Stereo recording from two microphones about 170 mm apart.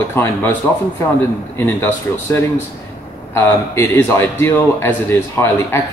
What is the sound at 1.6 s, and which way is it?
Speech, 15° left (ahead or behind).